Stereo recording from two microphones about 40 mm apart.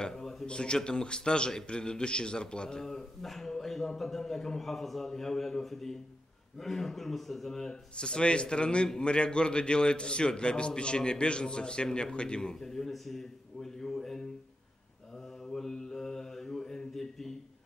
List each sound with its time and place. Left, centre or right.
0.0 s a sound: centre
0.5 s a man's voice: left
7.9 s a man's voice: left
12.5 s a man's voice: centre
15.4 s mantra: centre